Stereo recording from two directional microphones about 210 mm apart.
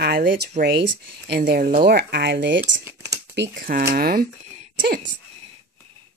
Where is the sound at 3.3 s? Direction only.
55° right (ahead or behind).